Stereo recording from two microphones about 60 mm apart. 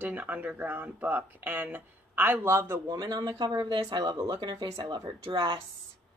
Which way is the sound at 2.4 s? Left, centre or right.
Right.